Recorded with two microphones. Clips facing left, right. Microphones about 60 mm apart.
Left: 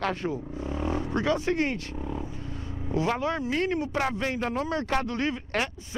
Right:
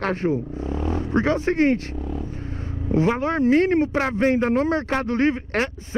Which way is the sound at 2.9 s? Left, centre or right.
Right.